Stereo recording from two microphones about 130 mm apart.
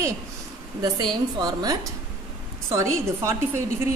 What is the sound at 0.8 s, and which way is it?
A woman's voice, 30° right (ahead or behind).